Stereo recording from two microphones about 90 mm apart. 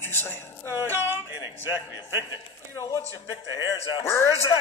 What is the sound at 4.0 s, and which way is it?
Speech, 30° left (ahead or behind).